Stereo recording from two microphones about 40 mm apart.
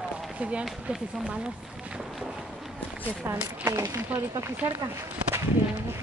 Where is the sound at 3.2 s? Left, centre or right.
Right.